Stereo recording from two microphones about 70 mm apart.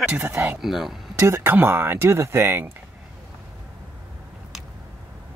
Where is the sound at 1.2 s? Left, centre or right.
Right.